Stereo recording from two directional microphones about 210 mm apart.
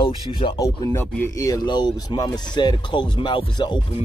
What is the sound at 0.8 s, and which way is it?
Speech, 10° left (ahead or behind).